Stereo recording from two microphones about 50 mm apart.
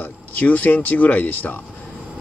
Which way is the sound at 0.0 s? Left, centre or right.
Left.